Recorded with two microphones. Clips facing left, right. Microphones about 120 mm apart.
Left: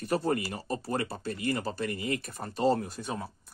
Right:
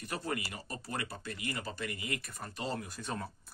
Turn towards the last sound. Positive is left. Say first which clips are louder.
# left 4 dB
turn(degrees=10)  # may be behind; listen again after turning